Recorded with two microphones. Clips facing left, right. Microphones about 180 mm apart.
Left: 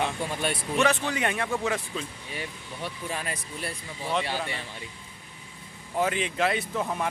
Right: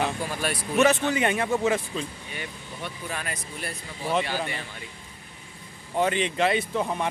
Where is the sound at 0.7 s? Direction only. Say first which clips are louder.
Right 5 dB; 5° right (ahead or behind).